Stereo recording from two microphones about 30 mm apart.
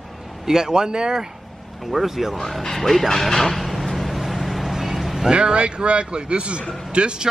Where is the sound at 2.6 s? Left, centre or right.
Centre.